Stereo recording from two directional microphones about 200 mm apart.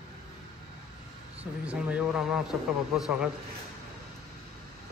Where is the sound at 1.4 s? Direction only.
5° right (ahead or behind).